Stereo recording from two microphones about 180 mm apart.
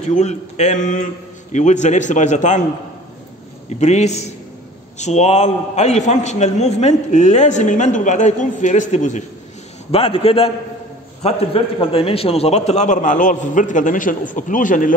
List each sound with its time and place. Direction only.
0.0 s a man's voice: 40° left (ahead or behind)
3.8 s a man's voice: 40° left (ahead or behind)
9.8 s a man's voice: 30° left (ahead or behind)